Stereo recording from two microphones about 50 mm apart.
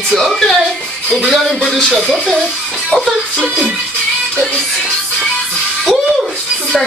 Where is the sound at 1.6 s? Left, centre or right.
Centre.